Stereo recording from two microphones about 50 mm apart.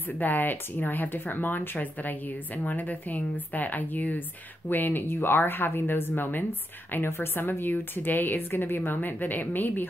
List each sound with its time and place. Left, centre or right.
0.2 s a woman's voice: left